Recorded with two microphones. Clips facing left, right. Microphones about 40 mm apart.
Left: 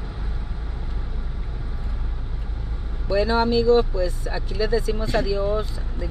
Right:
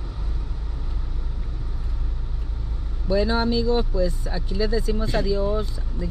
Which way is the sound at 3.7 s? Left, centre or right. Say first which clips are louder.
Left 3 dB; centre.